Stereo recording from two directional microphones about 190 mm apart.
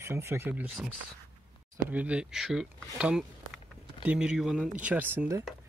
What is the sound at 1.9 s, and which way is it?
Speech, 5° right (ahead or behind).